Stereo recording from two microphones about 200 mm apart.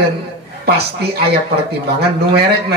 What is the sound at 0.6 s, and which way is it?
Speech, 50° right (ahead or behind).